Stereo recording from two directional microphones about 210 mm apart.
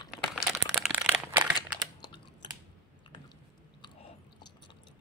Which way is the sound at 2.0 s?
20° left (ahead or behind).